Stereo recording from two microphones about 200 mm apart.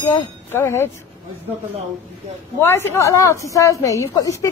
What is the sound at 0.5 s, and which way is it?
Speech, 10° left (ahead or behind).